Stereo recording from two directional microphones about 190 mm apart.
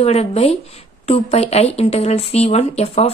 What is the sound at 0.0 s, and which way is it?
A woman's voice, 35° left (ahead or behind).